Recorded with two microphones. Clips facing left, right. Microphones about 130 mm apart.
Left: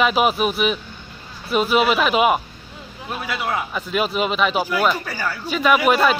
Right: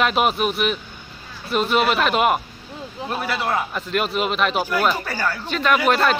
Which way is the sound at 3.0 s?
20° right (ahead or behind).